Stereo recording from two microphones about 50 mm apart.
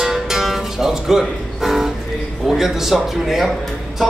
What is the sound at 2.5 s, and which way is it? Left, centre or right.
Speech, centre.